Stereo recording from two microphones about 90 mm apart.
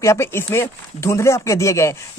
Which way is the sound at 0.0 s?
30° left (ahead or behind).